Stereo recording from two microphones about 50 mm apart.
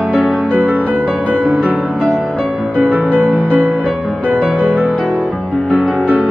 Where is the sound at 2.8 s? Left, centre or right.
Right.